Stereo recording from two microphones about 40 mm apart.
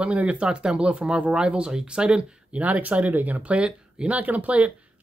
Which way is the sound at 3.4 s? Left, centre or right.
Right.